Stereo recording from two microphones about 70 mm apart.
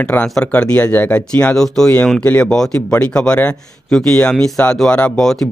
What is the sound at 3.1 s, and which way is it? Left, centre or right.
Speech, centre.